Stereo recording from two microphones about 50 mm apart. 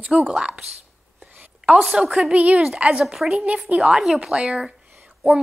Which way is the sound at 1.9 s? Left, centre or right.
Centre.